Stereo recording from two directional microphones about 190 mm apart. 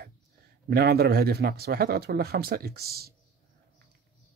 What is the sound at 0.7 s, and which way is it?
Speech, 55° right (ahead or behind).